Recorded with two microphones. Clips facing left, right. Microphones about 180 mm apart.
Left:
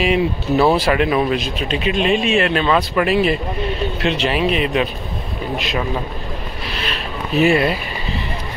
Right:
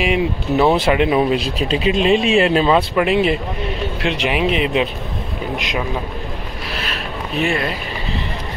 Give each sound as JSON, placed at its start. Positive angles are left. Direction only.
{"t": 0.0, "sound": "speech", "side_deg": -15}
{"t": 1.4, "sound": "speech", "side_deg": -30}
{"t": 7.3, "sound": "speech", "side_deg": 10}